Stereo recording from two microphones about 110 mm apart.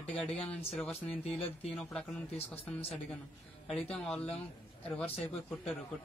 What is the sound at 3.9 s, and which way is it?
Speech, 5° left (ahead or behind).